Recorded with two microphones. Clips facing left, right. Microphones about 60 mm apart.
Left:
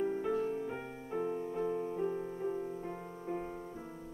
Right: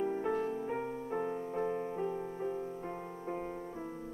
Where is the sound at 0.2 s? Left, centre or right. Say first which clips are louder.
Even; right.